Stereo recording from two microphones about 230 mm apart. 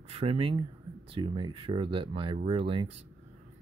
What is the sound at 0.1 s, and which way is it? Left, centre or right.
Speech, right.